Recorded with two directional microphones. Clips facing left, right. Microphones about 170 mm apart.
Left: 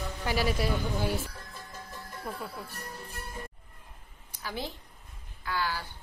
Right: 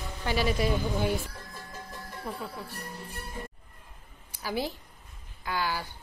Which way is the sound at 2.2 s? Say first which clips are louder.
Right 1 dB; centre (ahead or behind).